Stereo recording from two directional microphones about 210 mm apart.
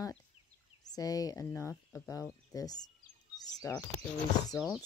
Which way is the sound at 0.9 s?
15° left (ahead or behind).